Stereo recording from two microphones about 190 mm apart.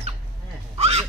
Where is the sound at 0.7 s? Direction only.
30° right (ahead or behind).